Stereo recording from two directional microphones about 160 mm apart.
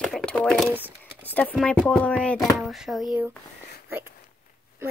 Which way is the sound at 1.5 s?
Centre (ahead or behind).